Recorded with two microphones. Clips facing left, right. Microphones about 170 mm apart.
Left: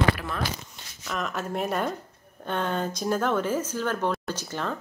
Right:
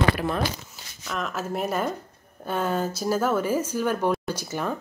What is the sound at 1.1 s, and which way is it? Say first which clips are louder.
Speech: right 1 dB; centre (ahead or behind).